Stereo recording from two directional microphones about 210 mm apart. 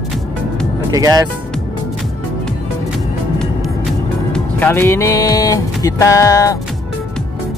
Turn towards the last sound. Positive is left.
turn(degrees=15)  # may be behind; listen again after turning